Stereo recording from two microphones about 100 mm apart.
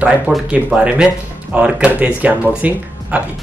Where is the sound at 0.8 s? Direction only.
10° right (ahead or behind).